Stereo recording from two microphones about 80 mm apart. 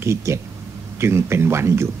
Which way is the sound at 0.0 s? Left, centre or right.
Right.